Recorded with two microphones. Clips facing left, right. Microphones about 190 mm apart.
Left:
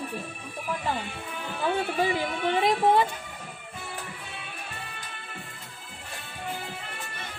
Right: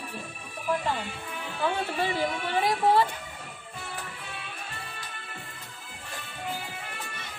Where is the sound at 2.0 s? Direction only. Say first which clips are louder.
Left 2 dB; 20° left (ahead or behind).